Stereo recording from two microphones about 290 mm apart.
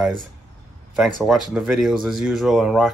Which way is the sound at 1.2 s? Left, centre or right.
Centre.